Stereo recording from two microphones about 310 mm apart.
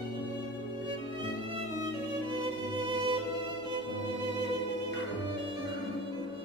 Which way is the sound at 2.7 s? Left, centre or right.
Centre.